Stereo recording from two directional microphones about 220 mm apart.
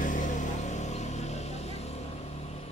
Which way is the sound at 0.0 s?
35° left (ahead or behind).